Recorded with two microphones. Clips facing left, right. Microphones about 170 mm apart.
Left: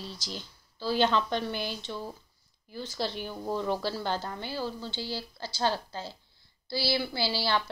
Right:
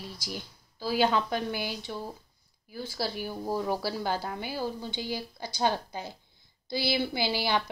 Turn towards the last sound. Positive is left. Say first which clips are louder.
# right 1 dB
turn(degrees=-15)  # may be behind; listen again after turning